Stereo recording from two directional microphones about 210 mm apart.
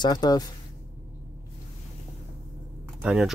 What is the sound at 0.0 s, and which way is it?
Speech, 20° left (ahead or behind).